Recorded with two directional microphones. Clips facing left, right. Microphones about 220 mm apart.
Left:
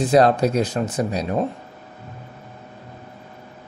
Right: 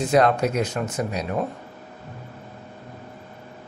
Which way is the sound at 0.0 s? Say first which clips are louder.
Left 3 dB; 35° left (ahead or behind).